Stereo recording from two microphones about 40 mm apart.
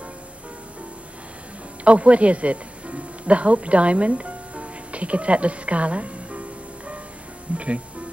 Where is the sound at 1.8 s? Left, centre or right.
Right.